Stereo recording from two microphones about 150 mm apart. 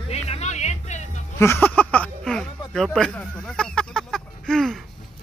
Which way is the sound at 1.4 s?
15° left (ahead or behind).